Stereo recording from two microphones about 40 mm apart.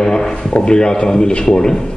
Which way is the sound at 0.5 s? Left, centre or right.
Left.